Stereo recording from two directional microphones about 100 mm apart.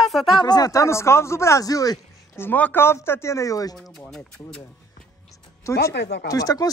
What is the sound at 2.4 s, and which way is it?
Speech, 20° left (ahead or behind).